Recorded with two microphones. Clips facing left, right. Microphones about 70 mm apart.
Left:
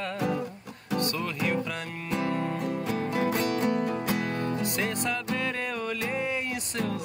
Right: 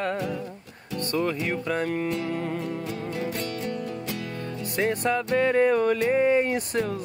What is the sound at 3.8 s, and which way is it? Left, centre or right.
Music, left.